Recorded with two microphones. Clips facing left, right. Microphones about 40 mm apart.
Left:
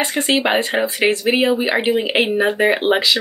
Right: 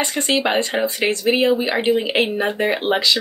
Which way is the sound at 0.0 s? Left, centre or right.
Left.